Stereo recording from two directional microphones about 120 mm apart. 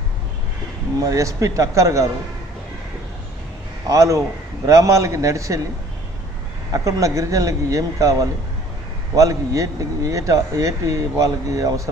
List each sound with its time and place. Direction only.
0.9 s speech: 30° right (ahead or behind)
3.9 s speech: 25° right (ahead or behind)
6.7 s speech: 25° right (ahead or behind)